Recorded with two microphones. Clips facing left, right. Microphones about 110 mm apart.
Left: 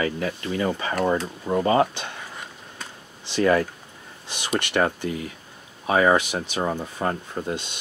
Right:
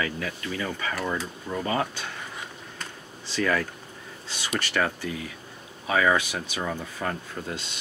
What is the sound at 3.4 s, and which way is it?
Speech, 30° left (ahead or behind).